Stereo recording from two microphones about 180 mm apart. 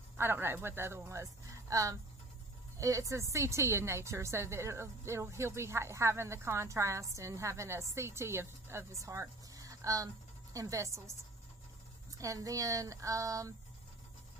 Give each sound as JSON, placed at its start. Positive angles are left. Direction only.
{"t": 0.2, "sound": "a woman's voice", "side_deg": -10}
{"t": 12.2, "sound": "speech", "side_deg": -20}